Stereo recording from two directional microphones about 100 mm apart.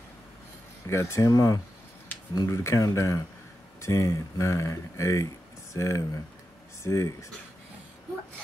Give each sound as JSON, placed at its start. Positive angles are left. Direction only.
{"t": 0.8, "sound": "speech", "side_deg": 30}